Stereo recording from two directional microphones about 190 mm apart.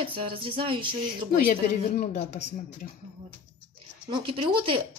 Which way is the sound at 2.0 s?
40° left (ahead or behind).